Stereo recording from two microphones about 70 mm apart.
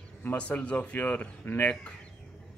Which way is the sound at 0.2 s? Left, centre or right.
Left.